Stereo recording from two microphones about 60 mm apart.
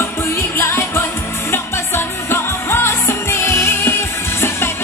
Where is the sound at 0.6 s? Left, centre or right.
Left.